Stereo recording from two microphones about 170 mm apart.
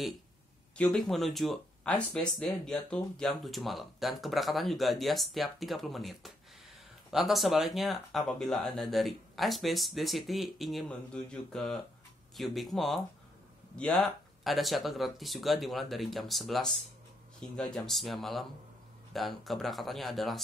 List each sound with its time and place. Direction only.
0.7 s speech: centre (ahead or behind)